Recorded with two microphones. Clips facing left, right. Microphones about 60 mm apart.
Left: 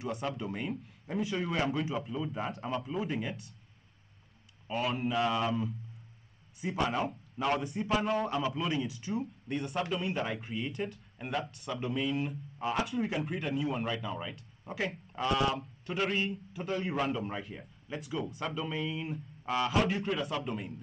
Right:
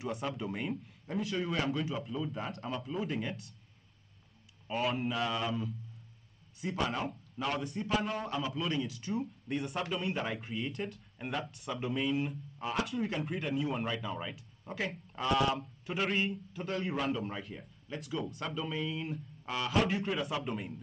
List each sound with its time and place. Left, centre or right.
0.0 s a man's voice: centre
4.6 s a man's voice: centre
5.3 s a man's voice: centre
12.5 s a man's voice: centre